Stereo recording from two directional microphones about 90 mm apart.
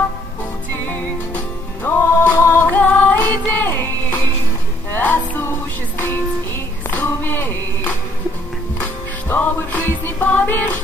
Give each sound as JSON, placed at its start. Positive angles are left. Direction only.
{"t": 0.8, "sound": "music", "side_deg": 25}
{"t": 9.3, "sound": "music", "side_deg": 20}